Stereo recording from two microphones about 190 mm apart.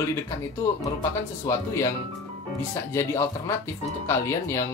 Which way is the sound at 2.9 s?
15° left (ahead or behind).